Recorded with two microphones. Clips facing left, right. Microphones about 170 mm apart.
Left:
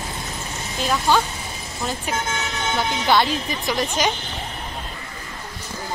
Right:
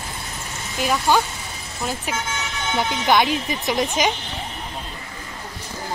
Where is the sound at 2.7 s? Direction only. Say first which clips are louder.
Right 1 dB; 15° right (ahead or behind).